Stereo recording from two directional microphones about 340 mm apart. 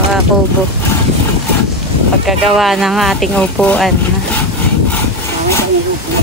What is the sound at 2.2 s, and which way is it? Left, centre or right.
Speech, centre.